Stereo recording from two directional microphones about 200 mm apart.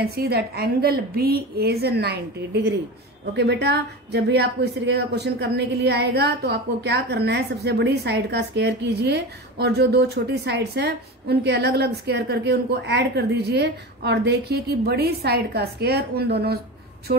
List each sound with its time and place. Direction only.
0.0 s a woman's voice: 50° right (ahead or behind)
3.3 s a woman's voice: 55° right (ahead or behind)